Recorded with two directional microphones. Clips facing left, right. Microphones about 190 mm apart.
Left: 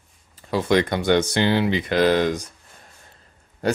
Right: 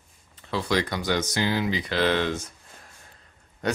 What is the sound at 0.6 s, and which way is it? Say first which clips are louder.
Speech: left 6 dB; 55° left (ahead or behind).